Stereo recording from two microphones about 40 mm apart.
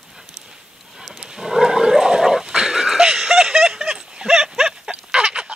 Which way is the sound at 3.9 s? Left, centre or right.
Centre.